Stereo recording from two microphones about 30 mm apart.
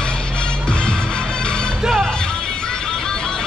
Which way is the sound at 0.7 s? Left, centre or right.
Left.